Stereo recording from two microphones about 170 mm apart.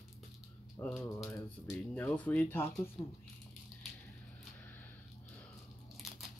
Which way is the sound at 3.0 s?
25° left (ahead or behind).